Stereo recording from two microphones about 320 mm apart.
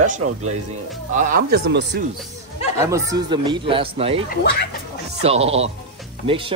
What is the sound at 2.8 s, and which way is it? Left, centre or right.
Speech, centre.